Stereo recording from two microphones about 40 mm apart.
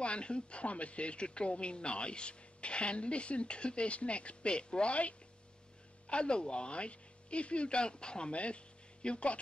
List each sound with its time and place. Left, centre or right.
0.0 s speech: left